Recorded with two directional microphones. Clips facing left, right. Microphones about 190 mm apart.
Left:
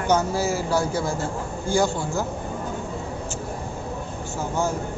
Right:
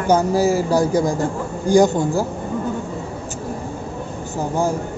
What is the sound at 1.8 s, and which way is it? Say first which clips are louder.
Speech: right 8 dB; 40° right (ahead or behind).